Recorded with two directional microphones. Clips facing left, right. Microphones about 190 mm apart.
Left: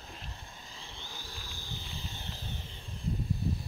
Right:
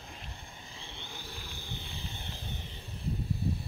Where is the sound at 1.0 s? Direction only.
60° right (ahead or behind).